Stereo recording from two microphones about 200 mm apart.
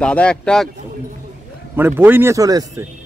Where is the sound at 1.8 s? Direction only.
10° right (ahead or behind).